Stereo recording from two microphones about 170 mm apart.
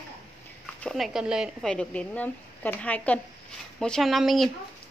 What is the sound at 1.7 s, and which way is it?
A woman's voice, 5° left (ahead or behind).